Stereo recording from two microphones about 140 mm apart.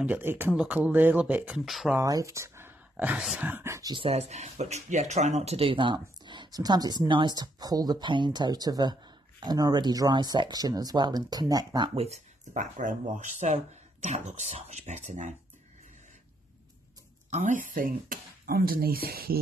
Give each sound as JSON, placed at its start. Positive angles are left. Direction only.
{"t": 0.0, "sound": "speech", "side_deg": -15}
{"t": 2.0, "sound": "speech", "side_deg": -25}
{"t": 3.9, "sound": "speech", "side_deg": -45}
{"t": 12.0, "sound": "speech", "side_deg": -55}
{"t": 14.0, "sound": "speech", "side_deg": -55}
{"t": 17.3, "sound": "speech", "side_deg": -60}